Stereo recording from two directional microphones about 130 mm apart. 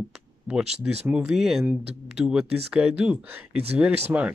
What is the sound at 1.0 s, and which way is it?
Speech, 5° right (ahead or behind).